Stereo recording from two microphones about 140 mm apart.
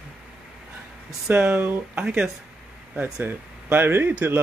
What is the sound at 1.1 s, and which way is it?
Speech, 5° right (ahead or behind).